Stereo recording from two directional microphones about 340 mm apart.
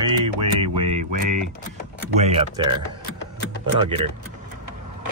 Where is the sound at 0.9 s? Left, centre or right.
Right.